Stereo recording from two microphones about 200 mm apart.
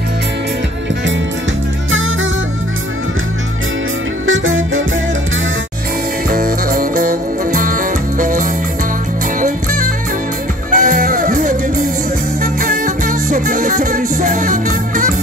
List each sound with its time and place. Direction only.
4.3 s music: 80° right
6.3 s music: 45° right (ahead or behind)
12.6 s music: 40° right (ahead or behind)